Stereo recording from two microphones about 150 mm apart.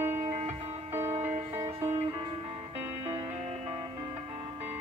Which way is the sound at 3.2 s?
40° right (ahead or behind).